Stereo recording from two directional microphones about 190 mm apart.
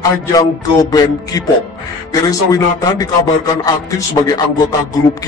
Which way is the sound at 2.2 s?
20° left (ahead or behind).